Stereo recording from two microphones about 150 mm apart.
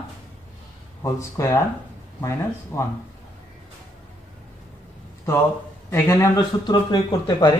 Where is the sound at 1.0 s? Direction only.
20° left (ahead or behind).